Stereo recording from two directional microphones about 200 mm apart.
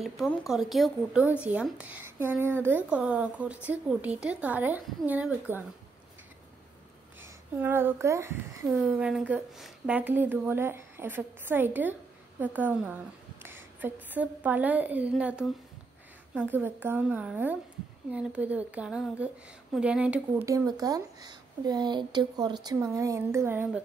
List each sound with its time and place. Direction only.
0.0 s a woman's voice: centre (ahead or behind)
7.2 s a woman's voice: 10° right (ahead or behind)